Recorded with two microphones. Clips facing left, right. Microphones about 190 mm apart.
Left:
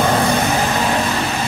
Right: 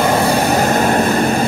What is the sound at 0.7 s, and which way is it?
Vehicle, 50° right (ahead or behind).